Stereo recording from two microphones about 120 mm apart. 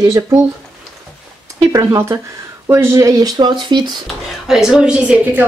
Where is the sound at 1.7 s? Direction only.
25° right (ahead or behind).